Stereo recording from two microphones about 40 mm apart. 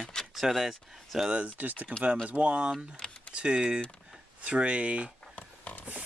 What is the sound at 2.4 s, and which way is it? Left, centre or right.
Speech, right.